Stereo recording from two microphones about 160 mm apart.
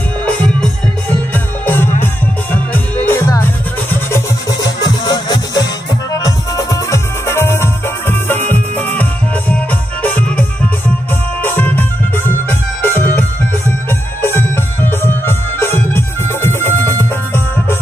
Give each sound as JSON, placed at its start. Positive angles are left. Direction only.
{"t": 1.3, "sound": "music", "side_deg": 15}
{"t": 11.4, "sound": "music", "side_deg": 10}